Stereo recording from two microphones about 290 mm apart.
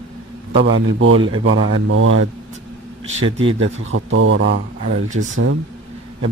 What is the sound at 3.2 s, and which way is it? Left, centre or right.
Speech, centre.